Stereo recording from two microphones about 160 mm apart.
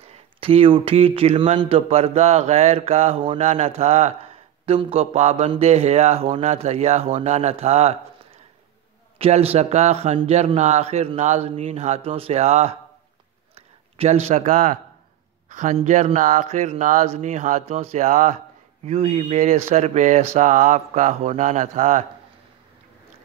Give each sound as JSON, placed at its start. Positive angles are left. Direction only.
{"t": 0.0, "sound": "speech", "side_deg": -35}
{"t": 9.2, "sound": "a man's voice", "side_deg": -40}